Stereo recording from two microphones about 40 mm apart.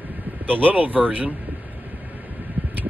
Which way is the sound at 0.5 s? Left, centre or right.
Right.